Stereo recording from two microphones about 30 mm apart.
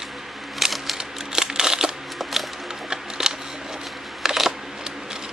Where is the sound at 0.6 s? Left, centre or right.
Centre.